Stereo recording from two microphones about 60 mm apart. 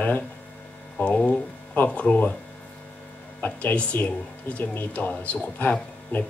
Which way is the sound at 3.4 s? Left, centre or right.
Left.